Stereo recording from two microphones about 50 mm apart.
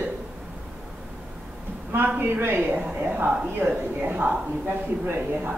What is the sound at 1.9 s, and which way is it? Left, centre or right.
A woman's voice, right.